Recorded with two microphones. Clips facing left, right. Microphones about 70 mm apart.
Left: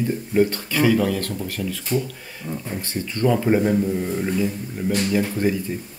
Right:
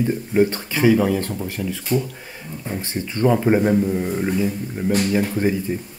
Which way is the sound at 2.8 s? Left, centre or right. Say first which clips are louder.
Right 2 dB; right.